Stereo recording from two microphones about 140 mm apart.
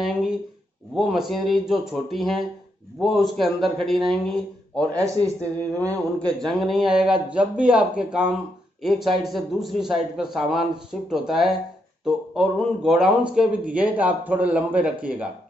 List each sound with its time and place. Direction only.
0.0 s a sound: 5° right (ahead or behind)
0.9 s a man's voice: 5° right (ahead or behind)
4.9 s speech: 25° right (ahead or behind)
5.9 s a man's voice: 5° left (ahead or behind); by 15.2 s 10° right (ahead or behind)